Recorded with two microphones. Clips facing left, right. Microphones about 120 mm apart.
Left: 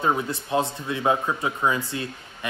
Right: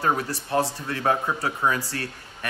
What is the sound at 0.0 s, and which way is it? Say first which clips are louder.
Speech: left 1 dB; 20° left (ahead or behind).